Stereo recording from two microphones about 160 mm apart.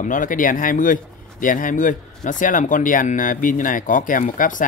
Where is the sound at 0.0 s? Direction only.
55° left (ahead or behind).